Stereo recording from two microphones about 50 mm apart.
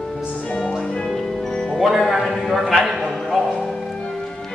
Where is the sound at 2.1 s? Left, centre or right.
Centre.